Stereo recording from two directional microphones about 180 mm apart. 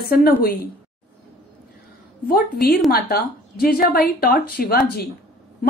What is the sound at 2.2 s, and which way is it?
A woman's voice, 55° left (ahead or behind).